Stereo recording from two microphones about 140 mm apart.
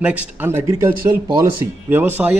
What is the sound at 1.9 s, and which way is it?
Speech, 15° right (ahead or behind).